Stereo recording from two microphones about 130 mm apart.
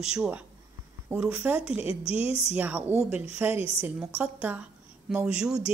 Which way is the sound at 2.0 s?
50° left (ahead or behind).